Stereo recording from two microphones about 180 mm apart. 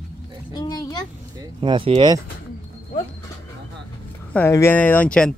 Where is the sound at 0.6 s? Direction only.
20° left (ahead or behind).